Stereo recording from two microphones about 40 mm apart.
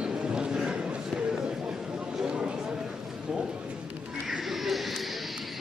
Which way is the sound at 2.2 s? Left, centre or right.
Right.